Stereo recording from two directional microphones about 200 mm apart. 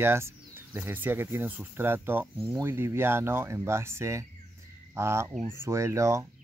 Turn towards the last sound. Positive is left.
turn(degrees=-15)  # may be behind; listen again after turning